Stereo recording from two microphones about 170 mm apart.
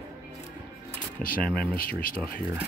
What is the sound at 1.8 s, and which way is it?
Speech, 60° left (ahead or behind).